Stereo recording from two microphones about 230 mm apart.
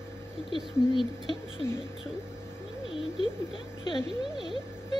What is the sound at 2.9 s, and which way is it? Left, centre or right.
Speech, left.